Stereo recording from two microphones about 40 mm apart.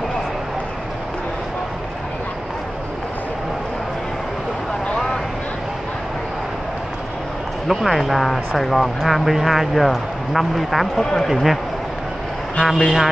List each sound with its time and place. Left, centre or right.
7.6 s speech: centre
12.6 s speech: centre